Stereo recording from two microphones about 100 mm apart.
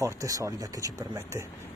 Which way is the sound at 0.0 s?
35° right (ahead or behind).